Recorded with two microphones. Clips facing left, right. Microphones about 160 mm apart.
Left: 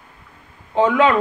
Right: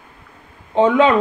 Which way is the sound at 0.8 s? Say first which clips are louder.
Right 2 dB; 25° right (ahead or behind).